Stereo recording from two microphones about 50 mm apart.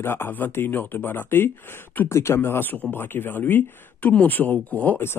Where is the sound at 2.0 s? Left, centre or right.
Left.